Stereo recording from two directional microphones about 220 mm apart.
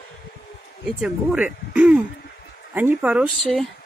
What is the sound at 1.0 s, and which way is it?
Speech, 5° right (ahead or behind).